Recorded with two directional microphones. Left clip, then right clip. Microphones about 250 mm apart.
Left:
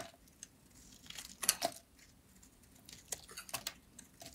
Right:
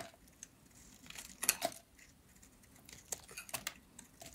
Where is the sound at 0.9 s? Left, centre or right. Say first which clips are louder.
Left 2 dB; centre.